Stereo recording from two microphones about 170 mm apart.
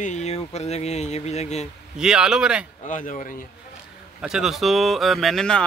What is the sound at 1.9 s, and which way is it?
Speech, 5° right (ahead or behind).